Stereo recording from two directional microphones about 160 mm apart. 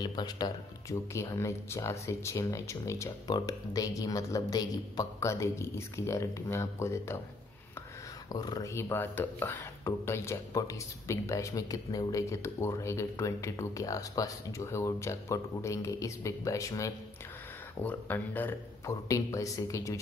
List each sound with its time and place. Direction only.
0.0 s speech: 25° left (ahead or behind)
8.3 s speech: 25° left (ahead or behind)